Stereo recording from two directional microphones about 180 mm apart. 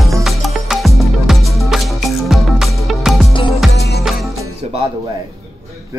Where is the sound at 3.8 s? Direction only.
60° left (ahead or behind).